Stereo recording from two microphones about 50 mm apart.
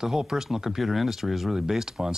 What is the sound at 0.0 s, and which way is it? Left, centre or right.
Speech, centre.